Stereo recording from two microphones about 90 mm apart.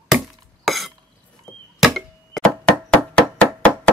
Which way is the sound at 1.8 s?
Centre (ahead or behind).